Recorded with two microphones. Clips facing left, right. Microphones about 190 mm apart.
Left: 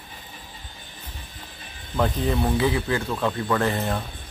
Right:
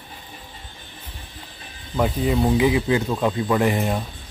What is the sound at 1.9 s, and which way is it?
Speech, 10° right (ahead or behind).